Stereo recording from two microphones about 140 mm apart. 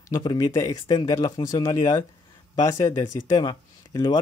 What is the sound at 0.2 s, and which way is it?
Speech, 30° left (ahead or behind).